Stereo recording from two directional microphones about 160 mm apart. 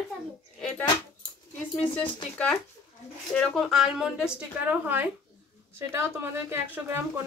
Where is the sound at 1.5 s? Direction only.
10° left (ahead or behind).